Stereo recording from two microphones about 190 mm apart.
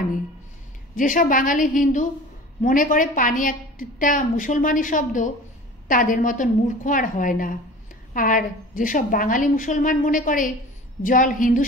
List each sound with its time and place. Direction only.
0.9 s a woman's voice: 45° left (ahead or behind)